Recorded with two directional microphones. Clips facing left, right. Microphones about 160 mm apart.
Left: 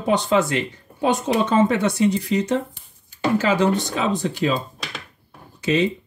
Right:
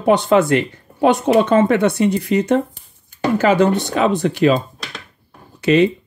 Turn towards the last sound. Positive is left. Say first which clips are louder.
# right 7 dB
turn(degrees=-65)  # may be behind; listen again after turning